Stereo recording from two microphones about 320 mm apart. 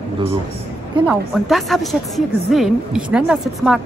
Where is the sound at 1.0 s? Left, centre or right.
Centre.